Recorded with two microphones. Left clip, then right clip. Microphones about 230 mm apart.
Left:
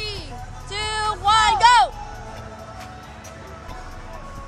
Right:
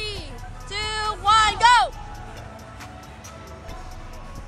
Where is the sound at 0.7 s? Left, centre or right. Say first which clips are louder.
Left 2 dB; centre.